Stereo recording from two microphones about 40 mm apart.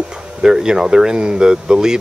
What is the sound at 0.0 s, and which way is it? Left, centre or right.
Speech, centre.